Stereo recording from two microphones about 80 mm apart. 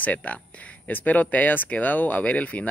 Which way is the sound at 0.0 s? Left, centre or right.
Centre.